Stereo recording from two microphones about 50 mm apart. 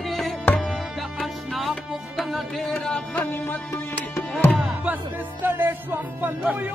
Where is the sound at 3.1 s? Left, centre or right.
Left.